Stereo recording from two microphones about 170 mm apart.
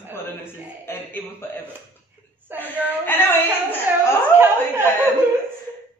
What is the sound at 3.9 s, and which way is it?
Speech, 10° right (ahead or behind).